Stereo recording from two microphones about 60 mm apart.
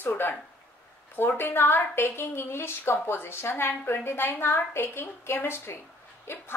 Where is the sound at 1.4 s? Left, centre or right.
Left.